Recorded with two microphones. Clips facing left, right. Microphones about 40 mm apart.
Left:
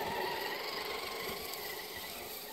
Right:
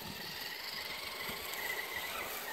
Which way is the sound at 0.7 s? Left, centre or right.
Centre.